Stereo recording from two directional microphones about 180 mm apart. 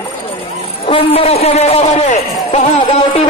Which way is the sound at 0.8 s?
30° left (ahead or behind).